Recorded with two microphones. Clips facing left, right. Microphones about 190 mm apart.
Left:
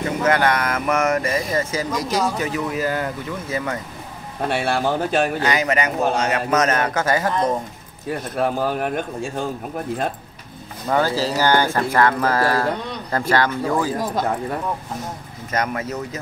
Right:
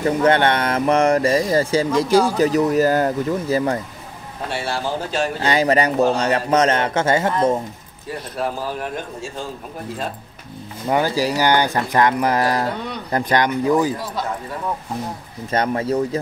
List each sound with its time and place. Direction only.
0.0 s speech: 30° right (ahead or behind)
4.5 s a man's voice: 55° left (ahead or behind)
5.4 s a man's voice: 30° right (ahead or behind)
8.4 s a man's voice: 60° left (ahead or behind)
10.9 s speech: 15° right (ahead or behind)
13.9 s speech: 50° left (ahead or behind)
15.5 s speech: 30° right (ahead or behind)